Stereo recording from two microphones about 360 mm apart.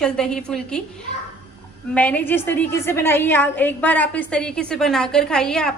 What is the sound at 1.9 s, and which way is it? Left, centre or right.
A woman's voice, centre.